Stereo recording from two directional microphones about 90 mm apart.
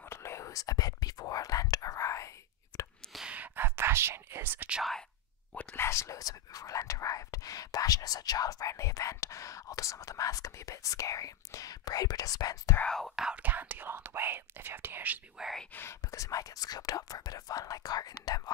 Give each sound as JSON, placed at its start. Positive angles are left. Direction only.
{"t": 0.1, "sound": "whispering", "side_deg": 30}
{"t": 3.2, "sound": "whispering", "side_deg": -15}
{"t": 5.8, "sound": "speech", "side_deg": 35}
{"t": 12.8, "sound": "speech", "side_deg": 5}
{"t": 13.1, "sound": "speech", "side_deg": -10}
{"t": 15.4, "sound": "speech", "side_deg": -5}
{"t": 16.1, "sound": "speech", "side_deg": 40}